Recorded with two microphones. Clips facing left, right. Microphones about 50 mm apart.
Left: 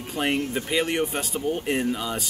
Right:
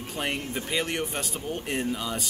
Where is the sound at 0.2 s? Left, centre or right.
Centre.